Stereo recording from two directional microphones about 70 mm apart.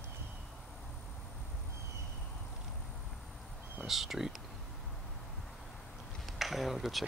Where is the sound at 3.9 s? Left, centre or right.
Centre.